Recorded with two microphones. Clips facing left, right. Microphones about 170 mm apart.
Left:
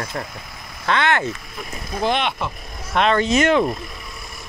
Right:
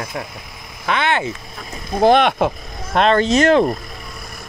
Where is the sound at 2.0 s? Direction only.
45° right (ahead or behind).